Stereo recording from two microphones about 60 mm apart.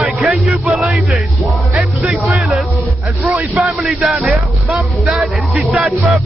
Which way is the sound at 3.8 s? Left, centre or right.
Centre.